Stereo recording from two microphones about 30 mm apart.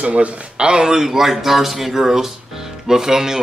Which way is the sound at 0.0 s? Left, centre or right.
Right.